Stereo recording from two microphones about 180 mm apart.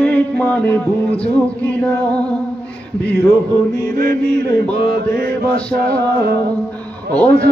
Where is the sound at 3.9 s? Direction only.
55° right (ahead or behind).